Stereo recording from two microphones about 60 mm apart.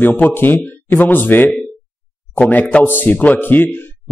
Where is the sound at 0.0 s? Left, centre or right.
Left.